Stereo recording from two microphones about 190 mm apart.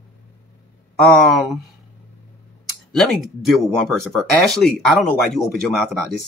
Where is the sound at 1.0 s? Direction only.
Centre (ahead or behind).